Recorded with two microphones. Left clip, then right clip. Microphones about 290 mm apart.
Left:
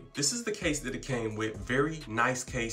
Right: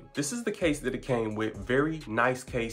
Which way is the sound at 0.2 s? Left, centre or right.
Centre.